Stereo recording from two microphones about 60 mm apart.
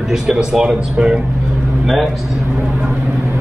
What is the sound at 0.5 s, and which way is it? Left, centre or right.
Speech, centre.